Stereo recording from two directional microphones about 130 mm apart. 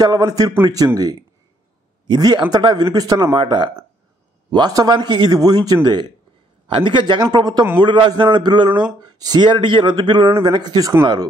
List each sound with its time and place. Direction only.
0.0 s a man's voice: 30° right (ahead or behind)